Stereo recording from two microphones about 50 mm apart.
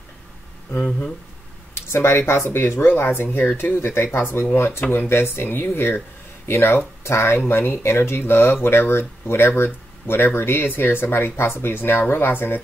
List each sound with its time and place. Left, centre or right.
1.9 s speech: left
7.0 s speech: left
7.3 s speech: left